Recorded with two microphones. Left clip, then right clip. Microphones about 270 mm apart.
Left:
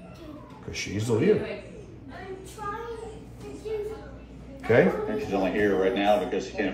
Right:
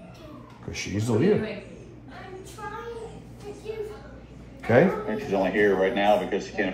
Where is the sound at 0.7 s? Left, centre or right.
Centre.